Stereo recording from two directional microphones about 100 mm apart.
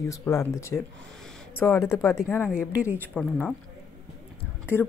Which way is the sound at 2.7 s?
15° right (ahead or behind).